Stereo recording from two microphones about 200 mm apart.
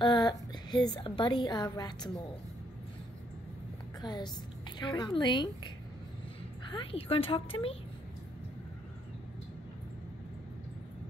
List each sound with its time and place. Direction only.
0.0 s a woman's voice: 20° left (ahead or behind)
4.0 s a woman's voice: 20° left (ahead or behind)
6.7 s a woman's voice: 25° left (ahead or behind)